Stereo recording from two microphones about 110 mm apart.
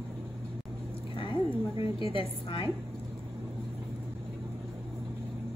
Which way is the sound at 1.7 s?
55° left (ahead or behind).